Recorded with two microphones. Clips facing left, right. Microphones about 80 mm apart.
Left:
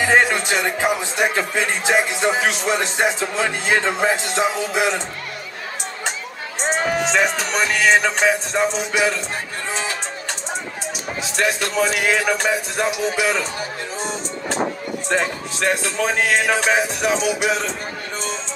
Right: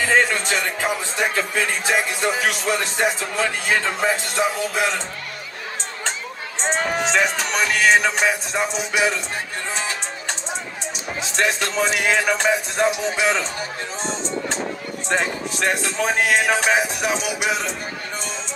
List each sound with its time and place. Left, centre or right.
0.0 s speech: centre
6.6 s music: centre
8.7 s speech: centre
11.2 s a man's voice: right
12.7 s a man's voice: right
15.0 s speech: right